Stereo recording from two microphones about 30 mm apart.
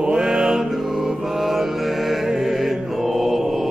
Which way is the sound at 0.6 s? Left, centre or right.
Centre.